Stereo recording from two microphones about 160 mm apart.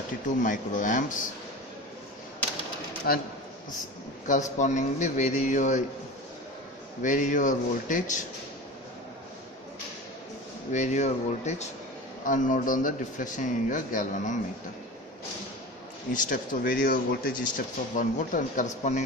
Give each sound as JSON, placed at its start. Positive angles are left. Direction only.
{"t": 0.4, "sound": "speech", "side_deg": 55}
{"t": 3.1, "sound": "speech", "side_deg": 75}
{"t": 4.3, "sound": "speech", "side_deg": 50}
{"t": 7.0, "sound": "speech", "side_deg": 55}
{"t": 10.7, "sound": "speech", "side_deg": 50}
{"t": 16.1, "sound": "speech", "side_deg": 55}